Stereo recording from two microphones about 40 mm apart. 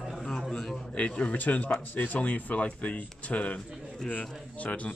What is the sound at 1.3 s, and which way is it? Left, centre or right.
A man's voice, left.